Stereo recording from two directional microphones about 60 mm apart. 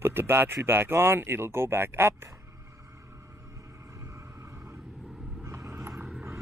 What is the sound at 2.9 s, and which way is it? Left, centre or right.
Vehicle, right.